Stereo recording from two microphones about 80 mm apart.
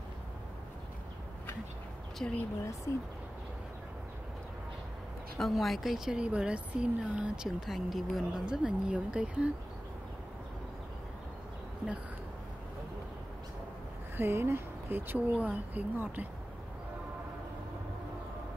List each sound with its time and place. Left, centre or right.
2.2 s speech: centre
5.4 s a woman's voice: centre
14.1 s speech: right